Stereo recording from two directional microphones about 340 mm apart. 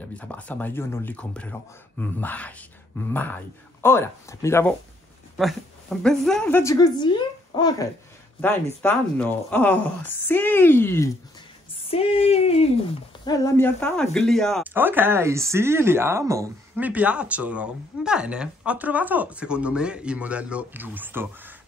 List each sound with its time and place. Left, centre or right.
0.2 s a woman's voice: centre